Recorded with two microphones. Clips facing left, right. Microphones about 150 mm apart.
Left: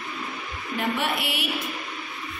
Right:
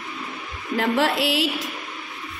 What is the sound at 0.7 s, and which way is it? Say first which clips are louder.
Speech: right 6 dB; 90° right.